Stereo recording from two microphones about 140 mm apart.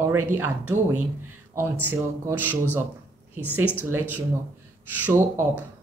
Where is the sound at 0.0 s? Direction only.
20° right (ahead or behind).